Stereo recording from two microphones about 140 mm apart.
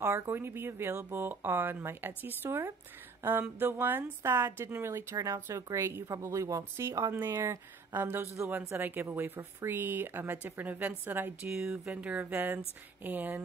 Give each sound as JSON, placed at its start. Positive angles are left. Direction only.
{"t": 0.0, "sound": "a woman's voice", "side_deg": -15}